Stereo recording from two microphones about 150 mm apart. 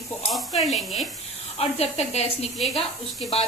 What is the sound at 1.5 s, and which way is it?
Speech, 45° left (ahead or behind).